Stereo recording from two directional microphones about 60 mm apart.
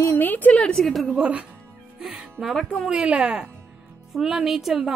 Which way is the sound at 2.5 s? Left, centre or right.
Centre.